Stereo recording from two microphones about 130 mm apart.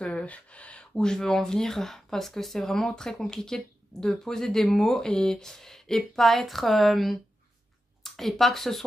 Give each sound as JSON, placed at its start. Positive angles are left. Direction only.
{"t": 0.0, "sound": "speech", "side_deg": 10}